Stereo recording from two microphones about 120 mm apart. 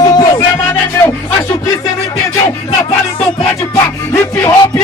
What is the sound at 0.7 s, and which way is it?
Music, 20° left (ahead or behind).